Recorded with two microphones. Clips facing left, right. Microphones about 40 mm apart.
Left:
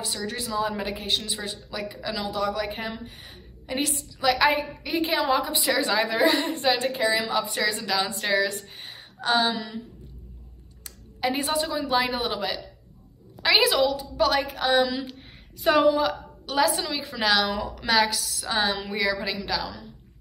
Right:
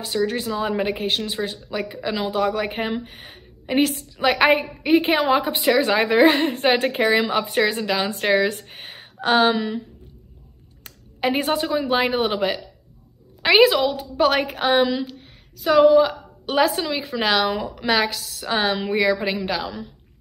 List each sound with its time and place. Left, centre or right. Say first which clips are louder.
0.0 s a woman's voice: right 8 dB; right
15.8 s a woman's voice: right 10 dB; centre
16.4 s a woman's voice: right 4 dB; right
17.7 s a woman's voice: even; right
18.1 s a woman's voice: right 3 dB; right